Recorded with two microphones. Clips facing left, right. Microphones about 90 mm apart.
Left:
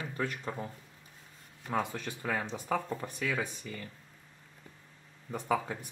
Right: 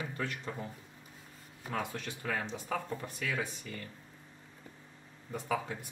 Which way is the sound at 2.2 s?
10° left (ahead or behind).